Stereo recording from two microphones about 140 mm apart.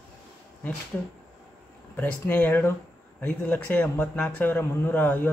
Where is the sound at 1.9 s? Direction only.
10° left (ahead or behind).